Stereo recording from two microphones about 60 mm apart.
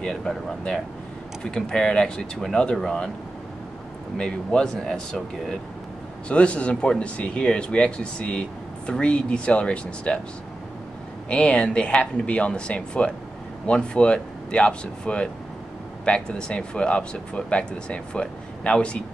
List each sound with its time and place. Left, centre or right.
0.0 s speech: centre
4.2 s speech: centre
6.2 s speech: centre
11.2 s speech: centre